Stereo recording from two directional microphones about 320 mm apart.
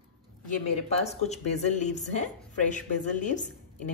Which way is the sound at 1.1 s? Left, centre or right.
Left.